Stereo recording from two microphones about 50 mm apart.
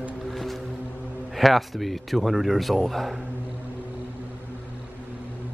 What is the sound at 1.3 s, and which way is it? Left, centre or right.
Speech, centre.